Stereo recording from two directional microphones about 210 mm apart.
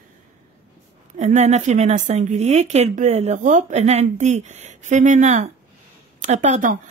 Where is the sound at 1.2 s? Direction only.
35° right (ahead or behind).